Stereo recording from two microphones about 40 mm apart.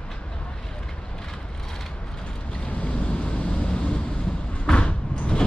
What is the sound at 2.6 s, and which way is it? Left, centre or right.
Waves, left.